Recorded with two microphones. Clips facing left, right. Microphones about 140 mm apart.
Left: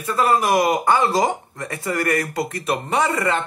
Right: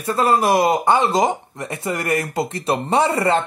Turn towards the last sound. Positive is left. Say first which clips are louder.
# right 3 dB
turn(degrees=-30)  # may be behind; listen again after turning